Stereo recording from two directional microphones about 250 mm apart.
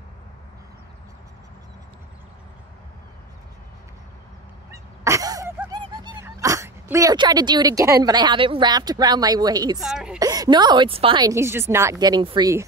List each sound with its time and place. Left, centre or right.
5.0 s sneeze: centre
9.8 s a woman's voice: centre
10.1 s a woman's voice: centre